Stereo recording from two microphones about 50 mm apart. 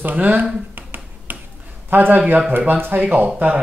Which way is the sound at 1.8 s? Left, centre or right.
Right.